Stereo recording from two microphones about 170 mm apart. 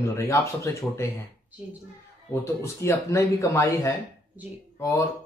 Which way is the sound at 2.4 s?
15° left (ahead or behind).